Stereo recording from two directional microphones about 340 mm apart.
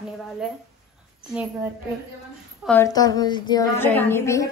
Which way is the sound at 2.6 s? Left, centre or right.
Centre.